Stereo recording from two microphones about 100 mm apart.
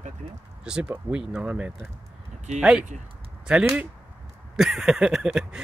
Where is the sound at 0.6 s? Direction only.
10° right (ahead or behind).